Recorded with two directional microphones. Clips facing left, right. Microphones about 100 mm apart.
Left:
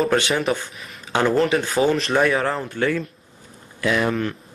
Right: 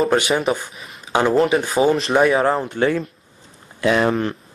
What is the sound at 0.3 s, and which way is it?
Speech, centre (ahead or behind).